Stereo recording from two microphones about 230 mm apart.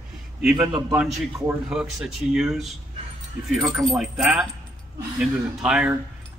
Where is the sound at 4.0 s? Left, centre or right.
Centre.